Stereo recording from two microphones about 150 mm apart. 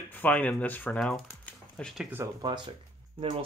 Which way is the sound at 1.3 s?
10° left (ahead or behind).